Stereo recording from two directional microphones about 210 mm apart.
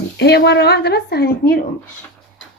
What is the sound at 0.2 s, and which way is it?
A woman's voice, 50° left (ahead or behind).